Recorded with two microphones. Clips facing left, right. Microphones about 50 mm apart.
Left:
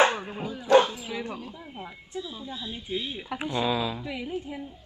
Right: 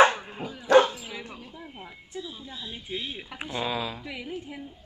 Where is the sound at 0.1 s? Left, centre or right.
Centre.